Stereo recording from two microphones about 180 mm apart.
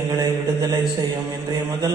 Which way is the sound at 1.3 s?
20° right (ahead or behind).